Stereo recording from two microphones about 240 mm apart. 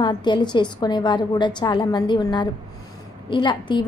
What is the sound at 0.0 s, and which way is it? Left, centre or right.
A woman's voice, centre.